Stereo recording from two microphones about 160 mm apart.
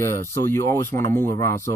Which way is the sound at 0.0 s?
15° left (ahead or behind).